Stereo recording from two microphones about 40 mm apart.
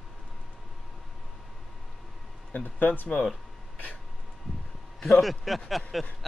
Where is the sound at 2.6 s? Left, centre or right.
Left.